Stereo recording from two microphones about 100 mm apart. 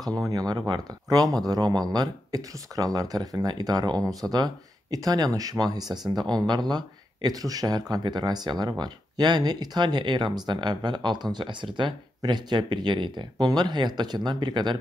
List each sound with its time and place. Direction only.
0.3 s speech: 40° right (ahead or behind)